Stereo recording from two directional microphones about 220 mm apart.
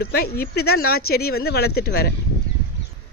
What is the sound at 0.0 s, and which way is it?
Speech, 45° left (ahead or behind).